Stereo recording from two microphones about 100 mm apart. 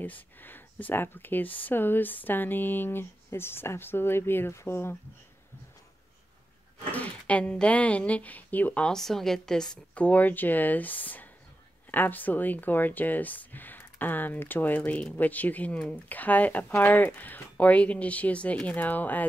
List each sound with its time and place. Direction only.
0.0 s speech: 20° left (ahead or behind)
6.8 s speech: 15° left (ahead or behind)